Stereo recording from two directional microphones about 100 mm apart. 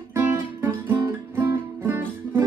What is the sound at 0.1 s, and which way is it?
Music, 25° right (ahead or behind).